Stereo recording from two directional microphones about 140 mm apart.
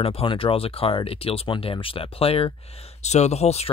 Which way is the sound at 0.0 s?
40° left (ahead or behind).